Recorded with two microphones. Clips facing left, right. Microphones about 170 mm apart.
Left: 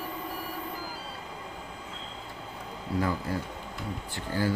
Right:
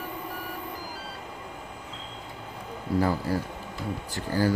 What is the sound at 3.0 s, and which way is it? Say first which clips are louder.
Speech: right 4 dB; 35° right (ahead or behind).